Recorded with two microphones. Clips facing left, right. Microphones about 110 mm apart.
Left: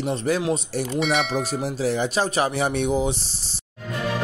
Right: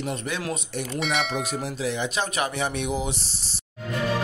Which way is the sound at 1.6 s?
35° left (ahead or behind).